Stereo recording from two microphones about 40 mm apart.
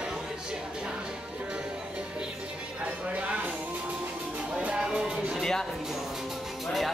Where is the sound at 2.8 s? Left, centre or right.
Right.